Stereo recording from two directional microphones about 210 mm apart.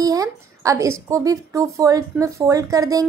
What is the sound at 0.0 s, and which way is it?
A woman's voice, 15° right (ahead or behind).